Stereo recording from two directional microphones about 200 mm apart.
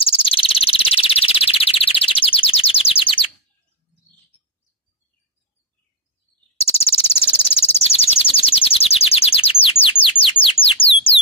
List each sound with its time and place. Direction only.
0.0 s chirp tone: 25° left (ahead or behind)
6.6 s a sound: 30° left (ahead or behind)
10.0 s bird: 25° left (ahead or behind)